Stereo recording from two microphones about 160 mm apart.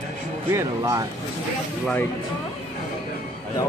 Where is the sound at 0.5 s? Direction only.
15° right (ahead or behind).